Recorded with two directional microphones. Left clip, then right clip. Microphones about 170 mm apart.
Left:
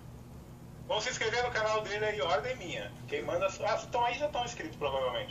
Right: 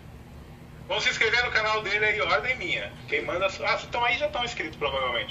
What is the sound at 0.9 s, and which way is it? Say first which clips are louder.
A man's voice: right 8 dB; 20° left (ahead or behind).